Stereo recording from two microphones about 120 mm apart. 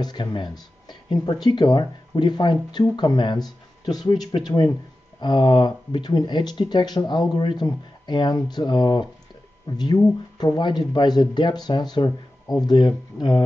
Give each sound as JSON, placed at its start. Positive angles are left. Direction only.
{"t": 0.0, "sound": "speech", "side_deg": 35}